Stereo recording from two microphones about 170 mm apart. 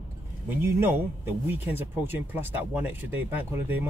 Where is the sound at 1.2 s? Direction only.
10° right (ahead or behind).